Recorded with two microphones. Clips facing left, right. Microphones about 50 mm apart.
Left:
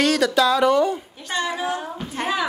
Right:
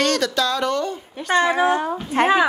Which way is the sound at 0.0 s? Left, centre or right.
Centre.